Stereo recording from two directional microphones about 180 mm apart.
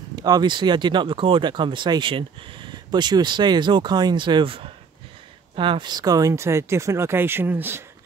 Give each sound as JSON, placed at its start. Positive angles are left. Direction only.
{"t": 0.1, "sound": "speech", "side_deg": -20}